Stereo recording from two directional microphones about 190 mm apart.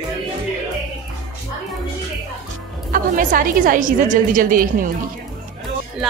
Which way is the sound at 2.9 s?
45° right (ahead or behind).